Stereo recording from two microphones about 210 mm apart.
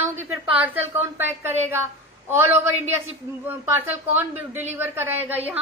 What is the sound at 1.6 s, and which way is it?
A woman's voice, 10° right (ahead or behind).